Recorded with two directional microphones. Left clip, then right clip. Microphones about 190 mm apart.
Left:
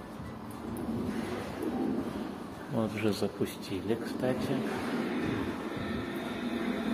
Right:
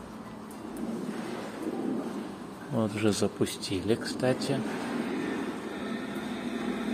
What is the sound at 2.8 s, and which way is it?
Speech, 25° right (ahead or behind).